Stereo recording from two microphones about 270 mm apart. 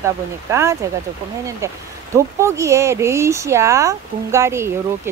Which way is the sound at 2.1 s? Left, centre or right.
Centre.